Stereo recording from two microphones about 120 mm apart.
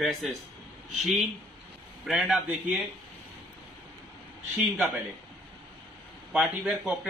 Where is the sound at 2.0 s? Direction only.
Centre (ahead or behind).